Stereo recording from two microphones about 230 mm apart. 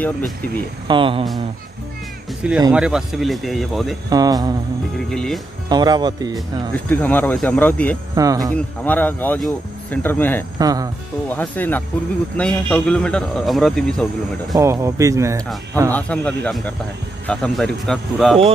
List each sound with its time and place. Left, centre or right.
0.8 s speech: right
2.7 s a man's voice: centre
4.1 s speech: centre
5.1 s a man's voice: centre
5.7 s speech: centre
6.7 s speech: centre
8.1 s speech: centre
8.8 s speech: centre
10.6 s speech: centre
11.2 s a man's voice: centre
14.6 s speech: centre
15.9 s a man's voice: centre